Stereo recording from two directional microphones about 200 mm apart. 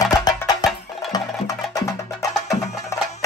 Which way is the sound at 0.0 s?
20° left (ahead or behind).